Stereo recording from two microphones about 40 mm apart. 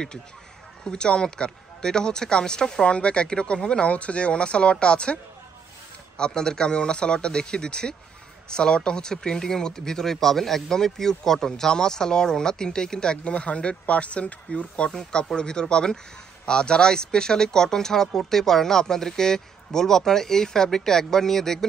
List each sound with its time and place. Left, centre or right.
0.8 s speech: left
13.2 s speech: left
15.3 s speech: centre